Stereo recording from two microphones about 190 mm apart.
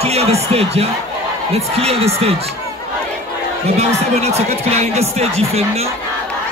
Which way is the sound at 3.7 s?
35° right (ahead or behind).